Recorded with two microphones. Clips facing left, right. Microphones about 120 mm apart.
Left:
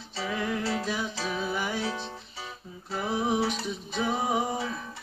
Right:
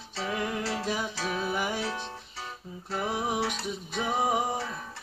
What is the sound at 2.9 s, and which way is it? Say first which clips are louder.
Music: left 2 dB; centre (ahead or behind).